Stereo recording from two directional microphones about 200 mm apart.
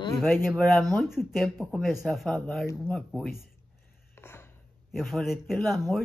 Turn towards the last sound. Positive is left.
turn(degrees=0)  # may be behind; listen again after turning